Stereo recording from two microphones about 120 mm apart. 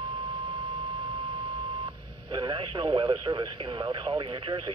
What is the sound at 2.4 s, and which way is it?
Speech, 40° right (ahead or behind).